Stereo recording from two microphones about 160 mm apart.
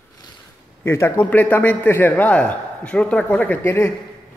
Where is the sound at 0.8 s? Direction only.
15° left (ahead or behind).